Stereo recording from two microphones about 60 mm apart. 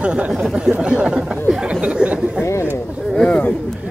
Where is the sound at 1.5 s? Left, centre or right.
Centre.